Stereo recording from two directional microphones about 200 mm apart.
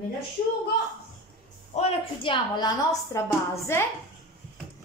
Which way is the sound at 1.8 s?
25° left (ahead or behind).